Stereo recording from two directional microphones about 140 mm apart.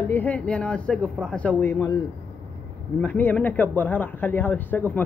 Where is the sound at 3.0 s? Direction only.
10° left (ahead or behind).